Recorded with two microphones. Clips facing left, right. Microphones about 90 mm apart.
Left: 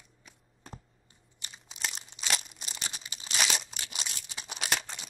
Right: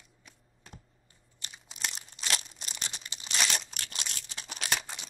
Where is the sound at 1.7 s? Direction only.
Centre (ahead or behind).